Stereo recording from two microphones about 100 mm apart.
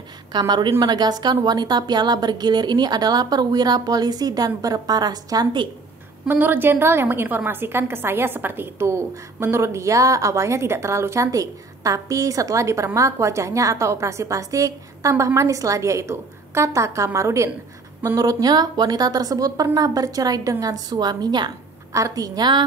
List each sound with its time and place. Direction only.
0.3 s a woman's voice: 45° right (ahead or behind)
6.2 s a woman's voice: 20° right (ahead or behind); by 22.6 s 45° right (ahead or behind)